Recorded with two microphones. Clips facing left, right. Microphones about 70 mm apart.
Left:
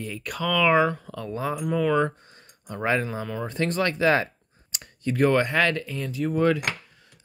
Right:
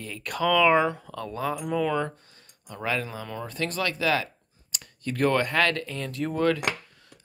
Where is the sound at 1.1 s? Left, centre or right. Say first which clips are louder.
Left 1 dB; centre.